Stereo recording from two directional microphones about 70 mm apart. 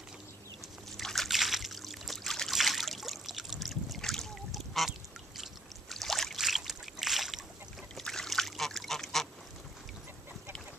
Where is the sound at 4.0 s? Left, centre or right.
Centre.